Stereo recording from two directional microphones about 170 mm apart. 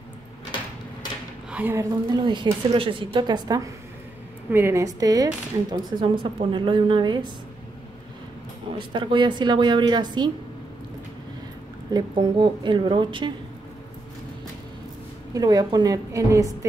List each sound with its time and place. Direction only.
1.5 s a woman's voice: 10° right (ahead or behind)
2.1 s speech: 25° right (ahead or behind)
4.5 s speech: 15° right (ahead or behind)
8.7 s speech: 30° right (ahead or behind)
11.9 s speech: 25° right (ahead or behind)
15.3 s speech: 25° right (ahead or behind)